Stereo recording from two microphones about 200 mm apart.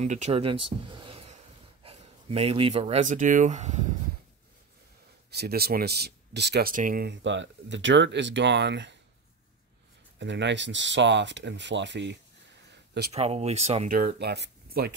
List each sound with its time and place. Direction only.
0.0 s speech: 35° right (ahead or behind)
5.3 s speech: 50° right (ahead or behind)
10.1 s speech: 60° right (ahead or behind)
12.7 s a sound: 55° right (ahead or behind)
13.1 s speech: 30° right (ahead or behind)
13.9 s speech: 50° right (ahead or behind)